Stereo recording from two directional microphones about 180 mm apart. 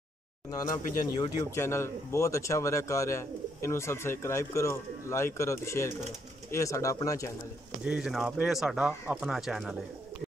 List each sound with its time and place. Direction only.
1.1 s speech: 20° left (ahead or behind)
7.8 s speech: 5° right (ahead or behind)